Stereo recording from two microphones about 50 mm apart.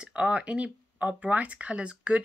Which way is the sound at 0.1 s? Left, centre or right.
Right.